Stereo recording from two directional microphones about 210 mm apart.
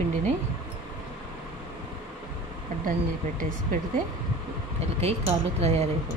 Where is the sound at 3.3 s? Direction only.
40° right (ahead or behind).